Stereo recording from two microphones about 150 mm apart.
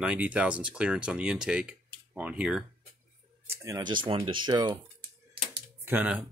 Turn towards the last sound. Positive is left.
turn(degrees=-10)  # may be behind; listen again after turning